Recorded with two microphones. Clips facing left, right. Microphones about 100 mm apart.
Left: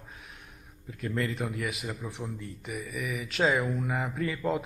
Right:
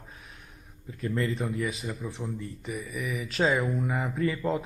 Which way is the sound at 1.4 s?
10° left (ahead or behind).